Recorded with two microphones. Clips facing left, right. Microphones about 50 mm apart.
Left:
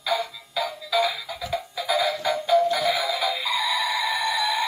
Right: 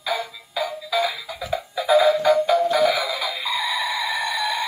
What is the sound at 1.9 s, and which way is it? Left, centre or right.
Music, centre.